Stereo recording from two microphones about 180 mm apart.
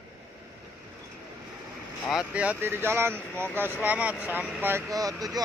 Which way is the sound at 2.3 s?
5° right (ahead or behind).